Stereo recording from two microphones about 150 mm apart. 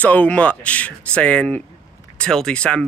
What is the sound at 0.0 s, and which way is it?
Speech, 10° left (ahead or behind).